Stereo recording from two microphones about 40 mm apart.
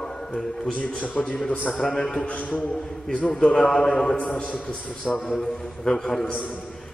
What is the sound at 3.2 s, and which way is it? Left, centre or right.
A man's voice, left.